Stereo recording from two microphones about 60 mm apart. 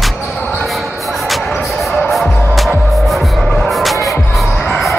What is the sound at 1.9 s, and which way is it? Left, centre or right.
Music, centre.